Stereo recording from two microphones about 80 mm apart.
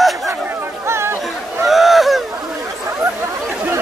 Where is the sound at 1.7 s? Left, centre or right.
Centre.